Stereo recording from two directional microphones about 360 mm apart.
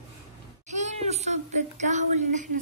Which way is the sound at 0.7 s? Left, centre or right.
Centre.